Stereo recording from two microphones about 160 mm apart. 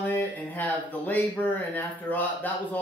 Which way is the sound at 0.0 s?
10° left (ahead or behind).